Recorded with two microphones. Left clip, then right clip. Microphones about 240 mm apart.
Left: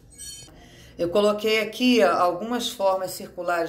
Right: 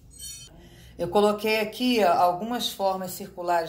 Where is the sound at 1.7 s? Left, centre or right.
Right.